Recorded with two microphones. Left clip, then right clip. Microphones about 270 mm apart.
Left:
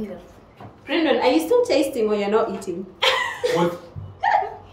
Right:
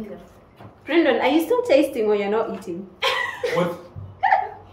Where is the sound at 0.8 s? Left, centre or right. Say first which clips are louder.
Even; centre.